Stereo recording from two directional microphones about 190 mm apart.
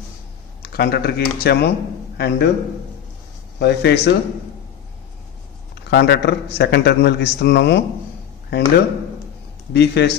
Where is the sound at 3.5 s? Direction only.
60° left (ahead or behind).